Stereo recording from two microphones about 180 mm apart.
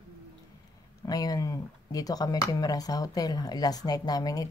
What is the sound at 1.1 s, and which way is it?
Speech, 20° left (ahead or behind).